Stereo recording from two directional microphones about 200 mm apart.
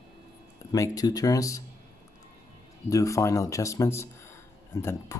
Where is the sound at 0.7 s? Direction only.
15° left (ahead or behind).